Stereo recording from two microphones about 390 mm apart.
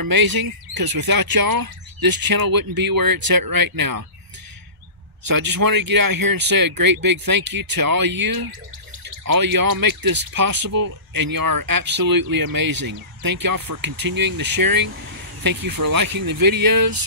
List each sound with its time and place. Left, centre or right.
0.0 s speech: right
5.2 s speech: right